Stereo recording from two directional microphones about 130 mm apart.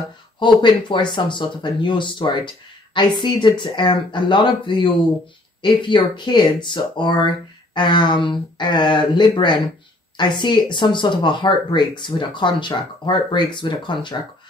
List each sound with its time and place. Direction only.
0.4 s speech: 35° left (ahead or behind)